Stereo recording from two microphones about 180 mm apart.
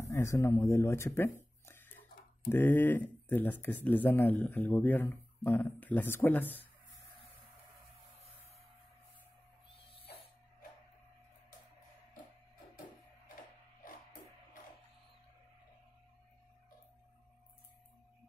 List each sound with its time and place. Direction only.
0.0 s speech: 15° left (ahead or behind)